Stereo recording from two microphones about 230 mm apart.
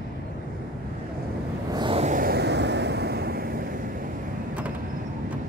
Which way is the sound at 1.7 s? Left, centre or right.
Right.